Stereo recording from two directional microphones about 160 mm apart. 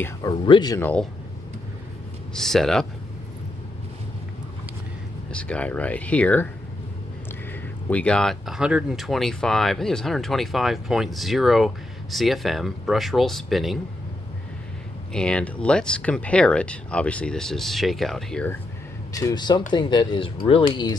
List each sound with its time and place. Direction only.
0.2 s speech: 25° left (ahead or behind)
0.7 s speech: 10° left (ahead or behind)
2.3 s speech: centre (ahead or behind)
5.3 s speech: 5° left (ahead or behind)
7.9 s speech: 5° left (ahead or behind)
15.1 s speech: 5° left (ahead or behind)
19.1 s speech: 25° left (ahead or behind)